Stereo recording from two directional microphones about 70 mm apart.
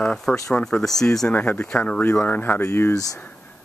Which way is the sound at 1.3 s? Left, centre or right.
Left.